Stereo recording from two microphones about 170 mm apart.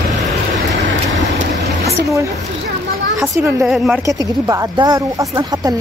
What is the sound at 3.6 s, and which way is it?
Speech, 5° right (ahead or behind).